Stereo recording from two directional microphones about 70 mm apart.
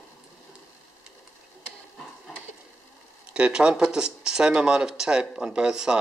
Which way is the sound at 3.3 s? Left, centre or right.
Centre.